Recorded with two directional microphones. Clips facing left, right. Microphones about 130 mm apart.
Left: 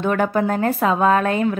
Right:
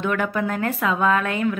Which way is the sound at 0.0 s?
35° left (ahead or behind).